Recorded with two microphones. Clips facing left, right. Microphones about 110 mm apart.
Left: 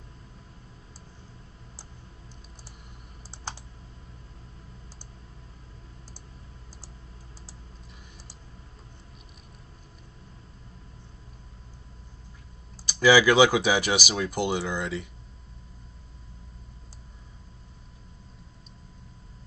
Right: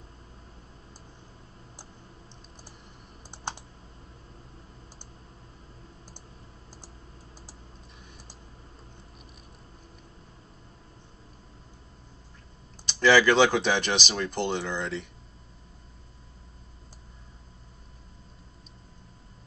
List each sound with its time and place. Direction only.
3.3 s computer keyboard: 20° right (ahead or behind)
12.8 s speech: 5° left (ahead or behind)